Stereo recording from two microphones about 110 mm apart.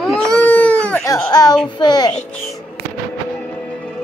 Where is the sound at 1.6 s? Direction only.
45° left (ahead or behind).